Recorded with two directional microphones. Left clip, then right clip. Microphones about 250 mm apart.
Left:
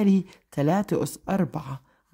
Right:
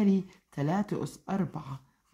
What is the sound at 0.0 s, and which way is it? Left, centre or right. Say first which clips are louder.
Speech: left 5 dB; left.